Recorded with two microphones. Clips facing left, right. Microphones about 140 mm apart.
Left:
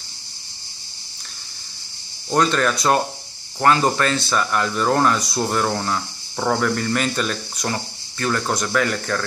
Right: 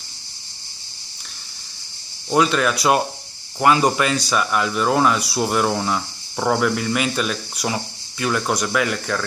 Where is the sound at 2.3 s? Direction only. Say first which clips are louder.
Right 1 dB; 5° right (ahead or behind).